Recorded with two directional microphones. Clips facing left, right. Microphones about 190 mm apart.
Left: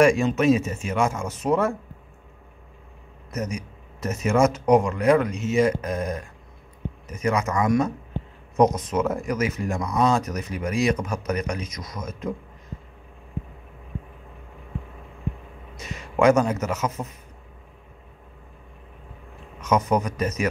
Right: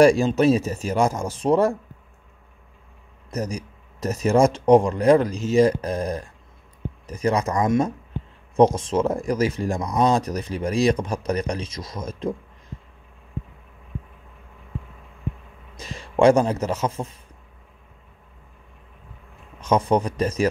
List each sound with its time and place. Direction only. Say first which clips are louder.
0.0 s speech: right 3 dB; 35° right (ahead or behind)
3.3 s speech: right 2 dB; 35° right (ahead or behind)
15.8 s speech: right 3 dB; 30° right (ahead or behind)
19.6 s speech: right 2 dB; 30° right (ahead or behind)